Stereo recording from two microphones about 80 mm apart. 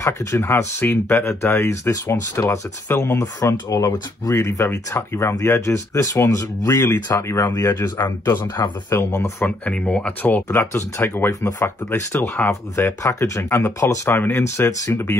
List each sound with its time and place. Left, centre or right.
0.0 s speech: left
3.3 s speech: left
9.7 s speech: centre; by 15.1 s left